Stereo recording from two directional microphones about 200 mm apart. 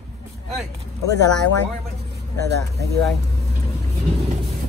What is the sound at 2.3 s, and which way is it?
Speech, 55° right (ahead or behind).